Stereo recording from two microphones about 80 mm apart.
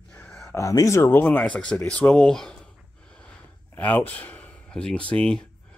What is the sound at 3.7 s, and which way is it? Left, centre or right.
Speech, left.